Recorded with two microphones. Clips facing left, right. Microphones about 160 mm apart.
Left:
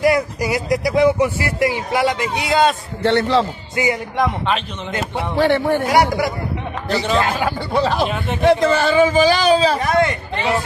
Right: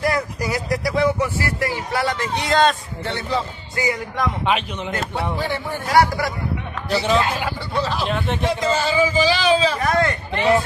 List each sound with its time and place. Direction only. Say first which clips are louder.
0.0 s speech: left 5 dB; 15° left (ahead or behind)
3.0 s a man's voice: left 8 dB; 80° left
3.7 s a man's voice: left 4 dB; 20° left (ahead or behind)
5.3 s speech: left 9 dB; 70° left (ahead or behind)
5.9 s speech: right 3 dB; 15° left (ahead or behind)
6.9 s a man's voice: even; 5° right (ahead or behind)
7.2 s a man's voice: left 3 dB; 50° left (ahead or behind)
8.1 s speech: left 1 dB; centre (ahead or behind)
8.5 s a man's voice: left 8 dB; 60° left (ahead or behind); by 9.8 s 40° left (ahead or behind)
9.8 s a man's voice: left 3 dB; 20° left (ahead or behind)